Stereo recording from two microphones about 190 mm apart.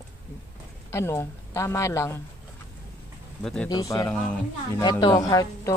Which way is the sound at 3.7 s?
20° left (ahead or behind).